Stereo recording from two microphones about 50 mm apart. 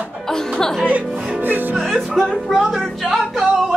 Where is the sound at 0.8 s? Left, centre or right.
Right.